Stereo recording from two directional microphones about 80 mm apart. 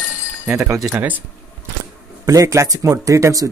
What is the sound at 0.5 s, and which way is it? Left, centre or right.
Speech, right.